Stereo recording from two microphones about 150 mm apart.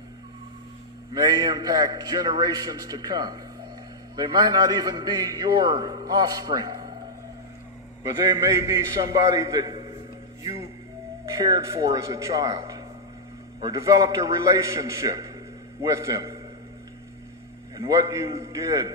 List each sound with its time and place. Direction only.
1.1 s a man's voice: 25° right (ahead or behind)
8.0 s a man's voice: 20° right (ahead or behind)
11.2 s a man's voice: 25° right (ahead or behind)
17.7 s a man's voice: 30° right (ahead or behind)